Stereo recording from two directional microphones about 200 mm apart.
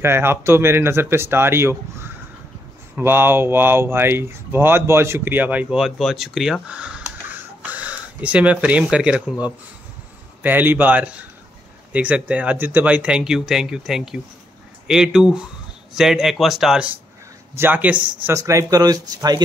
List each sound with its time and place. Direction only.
0.0 s speech: 10° right (ahead or behind)